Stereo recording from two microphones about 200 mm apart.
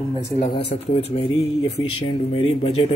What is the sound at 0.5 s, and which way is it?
Speech, 30° left (ahead or behind).